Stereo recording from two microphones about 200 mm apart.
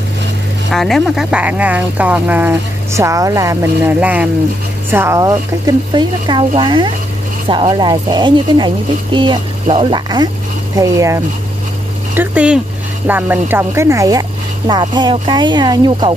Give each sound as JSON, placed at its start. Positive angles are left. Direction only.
{"t": 0.7, "sound": "a woman's voice", "side_deg": 0}